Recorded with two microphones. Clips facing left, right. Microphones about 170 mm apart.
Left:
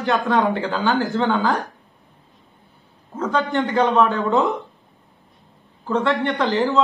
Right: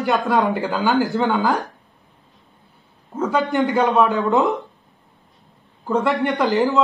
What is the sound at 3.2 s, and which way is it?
A man's voice, 10° right (ahead or behind).